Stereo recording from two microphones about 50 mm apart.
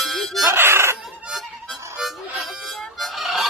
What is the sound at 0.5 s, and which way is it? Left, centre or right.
Baby cry, right.